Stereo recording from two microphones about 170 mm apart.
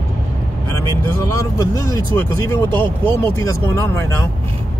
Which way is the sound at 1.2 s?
15° left (ahead or behind).